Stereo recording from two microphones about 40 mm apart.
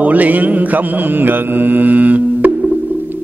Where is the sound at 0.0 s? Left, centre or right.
Right.